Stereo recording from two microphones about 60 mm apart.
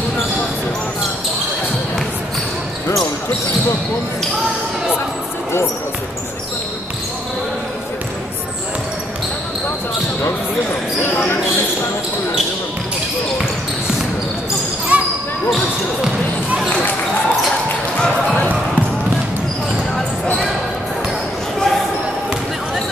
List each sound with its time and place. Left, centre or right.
11.1 s basketball bounce: left
14.9 s basketball bounce: right
17.9 s basketball bounce: centre
21.5 s basketball bounce: centre